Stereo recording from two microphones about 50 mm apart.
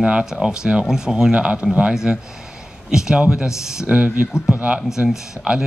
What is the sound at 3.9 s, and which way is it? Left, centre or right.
Speech, right.